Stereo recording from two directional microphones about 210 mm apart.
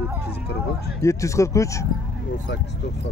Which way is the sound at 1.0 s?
15° left (ahead or behind).